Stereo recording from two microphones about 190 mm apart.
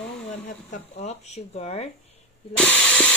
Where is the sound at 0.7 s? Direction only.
35° left (ahead or behind).